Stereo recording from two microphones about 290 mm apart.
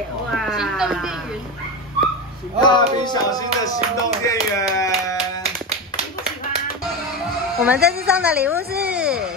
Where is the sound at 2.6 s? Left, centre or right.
Centre.